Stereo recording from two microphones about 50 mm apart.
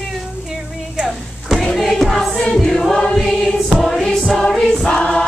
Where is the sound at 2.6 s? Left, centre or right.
Centre.